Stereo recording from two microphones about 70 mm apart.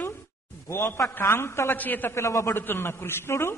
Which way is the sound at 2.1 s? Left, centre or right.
Left.